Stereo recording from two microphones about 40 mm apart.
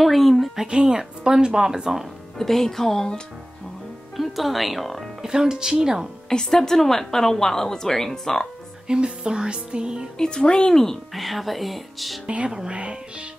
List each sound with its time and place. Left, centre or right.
0.0 s a sound: centre
0.7 s speech: centre
2.3 s a woman's voice: centre
4.2 s speech: centre
5.2 s speech: centre
6.2 s a woman's voice: centre
8.8 s music: right
10.1 s speech: centre
10.7 s speech: centre
12.4 s speech: centre